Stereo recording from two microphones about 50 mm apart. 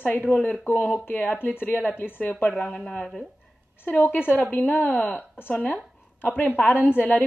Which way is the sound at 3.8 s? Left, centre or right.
Left.